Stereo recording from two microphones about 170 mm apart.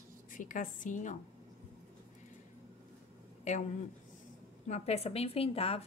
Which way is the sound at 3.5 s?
45° left (ahead or behind).